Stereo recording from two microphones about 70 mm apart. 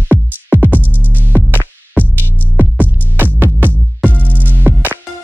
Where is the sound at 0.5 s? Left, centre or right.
Right.